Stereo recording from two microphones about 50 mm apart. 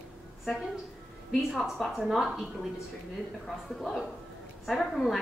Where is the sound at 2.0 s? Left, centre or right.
Centre.